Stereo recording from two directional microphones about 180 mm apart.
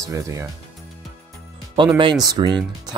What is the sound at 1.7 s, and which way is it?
Speech, 25° right (ahead or behind).